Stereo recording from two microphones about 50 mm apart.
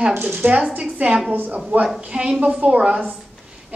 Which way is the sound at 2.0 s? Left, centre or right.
Right.